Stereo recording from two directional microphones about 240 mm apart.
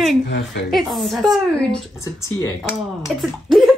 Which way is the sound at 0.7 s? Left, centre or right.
Centre.